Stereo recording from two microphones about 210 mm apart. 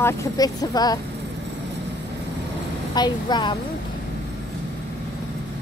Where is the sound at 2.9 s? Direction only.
20° left (ahead or behind).